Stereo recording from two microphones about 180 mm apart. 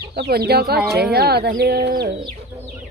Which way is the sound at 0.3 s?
60° right (ahead or behind).